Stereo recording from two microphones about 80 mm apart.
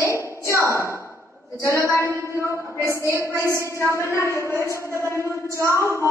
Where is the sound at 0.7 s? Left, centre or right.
Right.